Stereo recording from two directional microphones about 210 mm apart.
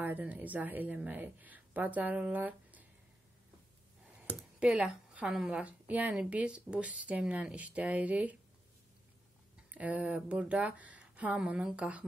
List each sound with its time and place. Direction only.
0.0 s a woman's voice: 10° right (ahead or behind)
4.3 s speech: 5° right (ahead or behind)
9.7 s speech: 5° right (ahead or behind)